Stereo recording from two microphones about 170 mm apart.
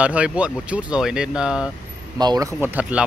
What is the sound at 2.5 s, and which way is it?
Speech, 10° right (ahead or behind).